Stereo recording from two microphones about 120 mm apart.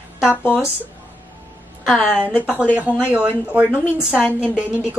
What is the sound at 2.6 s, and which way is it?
A woman's voice, 10° right (ahead or behind).